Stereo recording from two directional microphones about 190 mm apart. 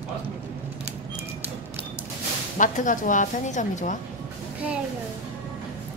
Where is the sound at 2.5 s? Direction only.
40° left (ahead or behind).